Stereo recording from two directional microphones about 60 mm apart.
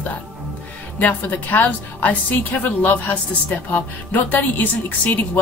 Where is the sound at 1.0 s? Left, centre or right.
Left.